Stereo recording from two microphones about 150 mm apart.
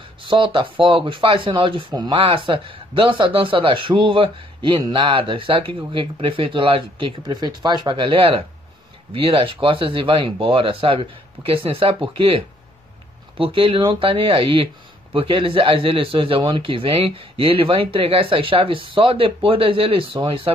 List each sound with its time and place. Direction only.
0.3 s speech: 35° right (ahead or behind)